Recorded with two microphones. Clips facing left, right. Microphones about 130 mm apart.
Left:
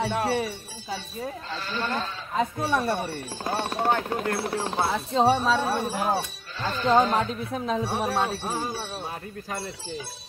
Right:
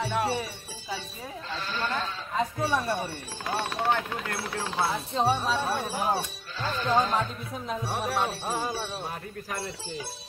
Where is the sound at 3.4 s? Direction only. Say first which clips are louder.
Left 2 dB; 35° left (ahead or behind).